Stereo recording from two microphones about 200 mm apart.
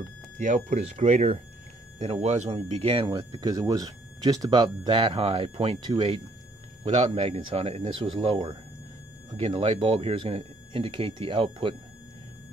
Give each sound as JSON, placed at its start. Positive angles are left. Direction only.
{"t": 0.4, "sound": "speech", "side_deg": -40}